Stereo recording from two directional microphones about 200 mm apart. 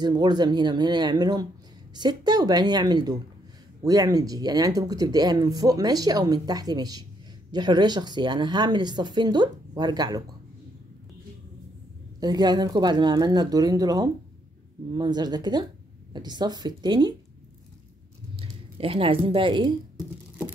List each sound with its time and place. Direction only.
0.0 s speech: 20° right (ahead or behind)
12.2 s speech: 20° right (ahead or behind)
18.3 s speech: 30° right (ahead or behind)